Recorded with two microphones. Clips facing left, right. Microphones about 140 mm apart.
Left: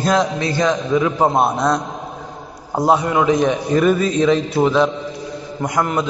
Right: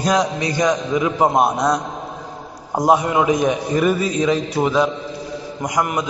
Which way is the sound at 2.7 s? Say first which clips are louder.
Even; 15° right (ahead or behind).